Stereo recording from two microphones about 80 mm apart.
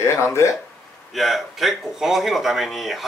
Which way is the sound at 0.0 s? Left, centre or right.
Left.